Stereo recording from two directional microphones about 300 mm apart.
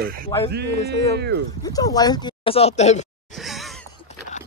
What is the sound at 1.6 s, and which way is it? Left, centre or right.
Speech, centre.